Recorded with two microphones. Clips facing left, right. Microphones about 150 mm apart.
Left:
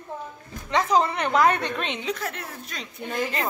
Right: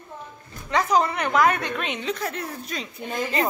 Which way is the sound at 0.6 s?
25° left (ahead or behind).